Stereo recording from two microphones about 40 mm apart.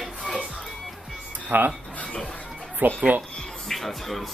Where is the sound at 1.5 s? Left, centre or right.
Right.